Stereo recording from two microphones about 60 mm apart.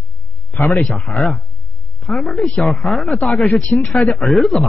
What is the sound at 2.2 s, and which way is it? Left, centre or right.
Speech, centre.